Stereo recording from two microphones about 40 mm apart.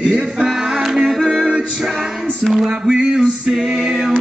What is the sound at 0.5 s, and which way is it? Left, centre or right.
Music, centre.